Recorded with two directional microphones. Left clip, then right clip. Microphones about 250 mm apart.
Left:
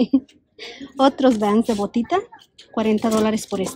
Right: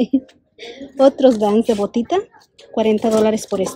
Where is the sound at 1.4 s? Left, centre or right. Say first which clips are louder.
Right 3 dB; left.